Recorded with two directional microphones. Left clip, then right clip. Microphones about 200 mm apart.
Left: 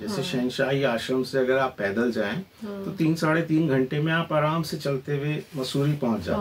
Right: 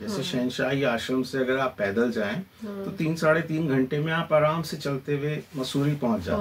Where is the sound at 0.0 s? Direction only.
20° left (ahead or behind).